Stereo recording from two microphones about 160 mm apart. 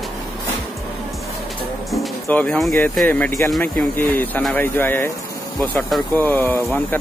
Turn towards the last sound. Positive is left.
turn(degrees=10)  # may be behind; listen again after turning